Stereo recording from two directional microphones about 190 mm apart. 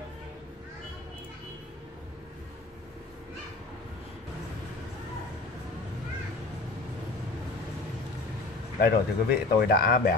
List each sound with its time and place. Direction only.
8.8 s speech: 55° left (ahead or behind)